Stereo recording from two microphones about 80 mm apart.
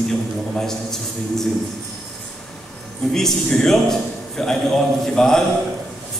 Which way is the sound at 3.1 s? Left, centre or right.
Centre.